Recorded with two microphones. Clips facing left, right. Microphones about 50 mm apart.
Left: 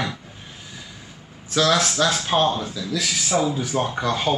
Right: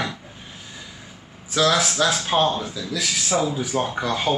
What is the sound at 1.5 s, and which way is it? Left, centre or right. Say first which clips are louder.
A man's voice: even; centre.